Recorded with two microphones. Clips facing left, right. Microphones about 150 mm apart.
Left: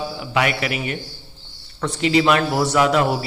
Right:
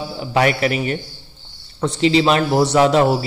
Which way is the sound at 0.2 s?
35° right (ahead or behind).